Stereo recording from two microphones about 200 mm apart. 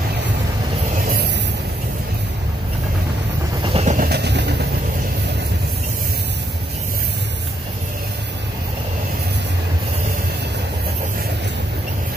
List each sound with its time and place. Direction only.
3.6 s train: 30° right (ahead or behind)
4.1 s train: 55° right (ahead or behind)